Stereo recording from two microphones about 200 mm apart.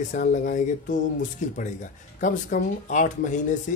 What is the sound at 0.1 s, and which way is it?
Speech, 40° left (ahead or behind).